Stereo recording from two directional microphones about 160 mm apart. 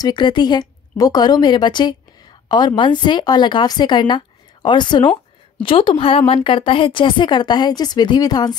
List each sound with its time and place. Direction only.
0.0 s a woman's voice: 30° left (ahead or behind)